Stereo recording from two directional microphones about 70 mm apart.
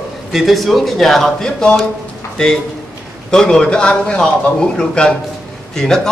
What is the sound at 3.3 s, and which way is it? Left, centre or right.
A man's voice, centre.